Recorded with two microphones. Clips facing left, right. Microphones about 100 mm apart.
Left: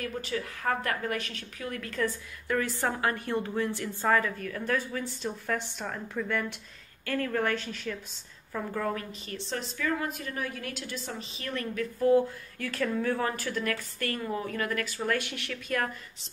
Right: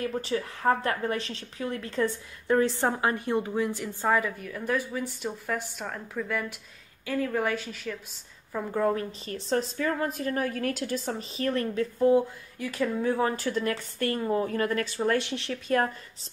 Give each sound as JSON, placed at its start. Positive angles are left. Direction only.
{"t": 0.0, "sound": "a woman's voice", "side_deg": -30}
{"t": 8.5, "sound": "a woman's voice", "side_deg": -25}
{"t": 9.5, "sound": "a woman's voice", "side_deg": -40}